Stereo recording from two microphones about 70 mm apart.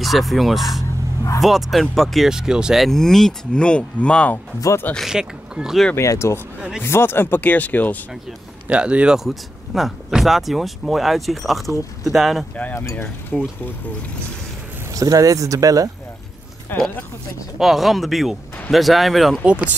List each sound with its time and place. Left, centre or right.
0.0 s speech: centre
2.8 s speech: centre
5.0 s speech: centre
5.9 s speech: left
6.8 s speech: left
8.6 s speech: centre
14.9 s speech: right
16.7 s speech: left
17.6 s speech: centre
19.4 s speech: centre